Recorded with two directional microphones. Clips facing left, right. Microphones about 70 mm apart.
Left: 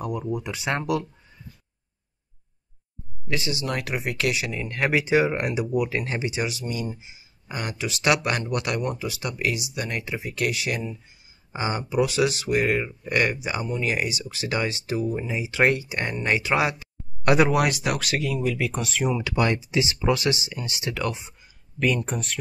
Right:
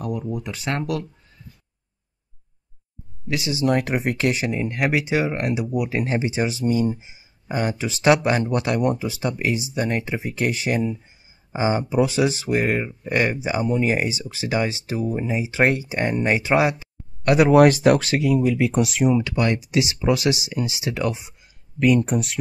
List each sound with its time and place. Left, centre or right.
0.0 s speech: centre
3.3 s speech: centre
3.8 s speech: right
4.7 s speech: centre; by 6.6 s right
6.6 s speech: right
11.5 s speech: right
17.5 s speech: right
17.9 s speech: right
18.9 s speech: centre
19.7 s speech: centre
21.4 s a sound: centre